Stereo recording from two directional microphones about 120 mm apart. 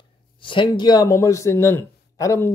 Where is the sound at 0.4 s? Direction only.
45° left (ahead or behind).